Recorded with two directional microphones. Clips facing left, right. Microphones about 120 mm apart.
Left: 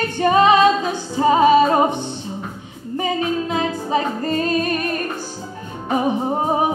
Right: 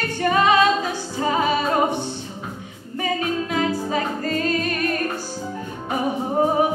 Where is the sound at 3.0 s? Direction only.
25° left (ahead or behind).